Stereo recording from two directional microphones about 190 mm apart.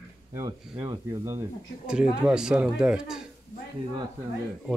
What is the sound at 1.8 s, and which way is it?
Speech, 5° right (ahead or behind).